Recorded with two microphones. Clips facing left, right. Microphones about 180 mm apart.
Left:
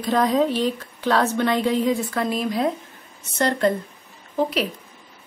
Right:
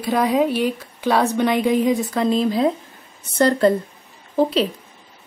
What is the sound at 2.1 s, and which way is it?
A woman's voice, 25° right (ahead or behind).